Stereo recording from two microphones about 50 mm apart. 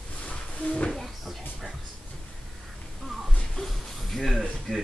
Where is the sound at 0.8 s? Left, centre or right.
Centre.